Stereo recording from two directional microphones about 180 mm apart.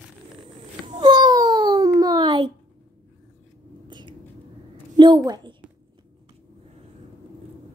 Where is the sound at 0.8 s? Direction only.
25° right (ahead or behind).